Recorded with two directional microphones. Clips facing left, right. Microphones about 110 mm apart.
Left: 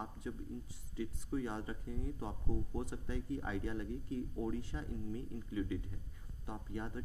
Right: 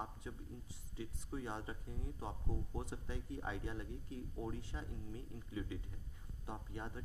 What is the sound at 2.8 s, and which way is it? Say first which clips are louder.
Speech: left 5 dB; 20° right (ahead or behind).